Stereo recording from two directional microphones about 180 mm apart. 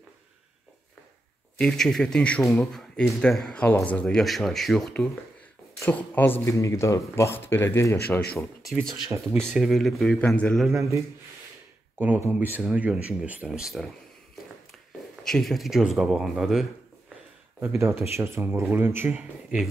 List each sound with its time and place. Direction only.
1.6 s speech: 5° left (ahead or behind)
9.1 s speech: 15° right (ahead or behind)
9.5 s speech: centre (ahead or behind)
10.7 s speech: 15° right (ahead or behind)
12.0 s speech: 10° right (ahead or behind)
15.2 s speech: centre (ahead or behind)
17.6 s speech: 15° right (ahead or behind)